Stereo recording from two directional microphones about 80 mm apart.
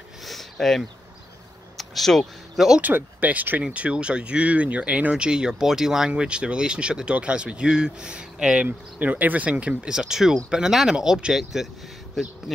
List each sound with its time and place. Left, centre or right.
0.2 s a sound: centre
1.8 s speech: centre
2.8 s speech: right; by 11.7 s centre